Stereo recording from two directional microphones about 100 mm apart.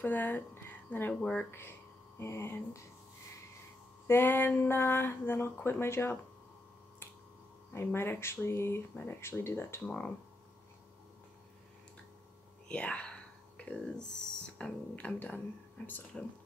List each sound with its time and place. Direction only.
0.0 s speech: 20° left (ahead or behind)
4.1 s speech: 20° left (ahead or behind)
7.7 s speech: 25° left (ahead or behind)
12.6 s speech: 10° left (ahead or behind)